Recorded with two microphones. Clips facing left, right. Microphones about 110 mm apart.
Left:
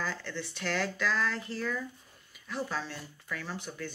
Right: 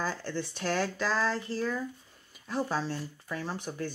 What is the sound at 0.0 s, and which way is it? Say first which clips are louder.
Speech: right 3 dB; 35° right (ahead or behind).